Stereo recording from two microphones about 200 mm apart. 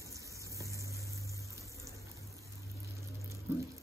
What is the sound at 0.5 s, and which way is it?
Vehicle, 15° right (ahead or behind).